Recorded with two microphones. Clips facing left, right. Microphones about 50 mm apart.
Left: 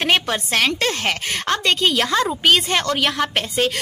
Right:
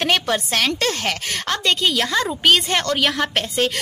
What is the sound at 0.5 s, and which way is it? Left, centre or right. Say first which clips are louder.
A woman's voice: left 1 dB; left.